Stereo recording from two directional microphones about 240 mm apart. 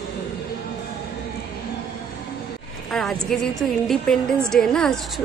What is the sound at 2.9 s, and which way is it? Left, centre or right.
A woman's voice, centre.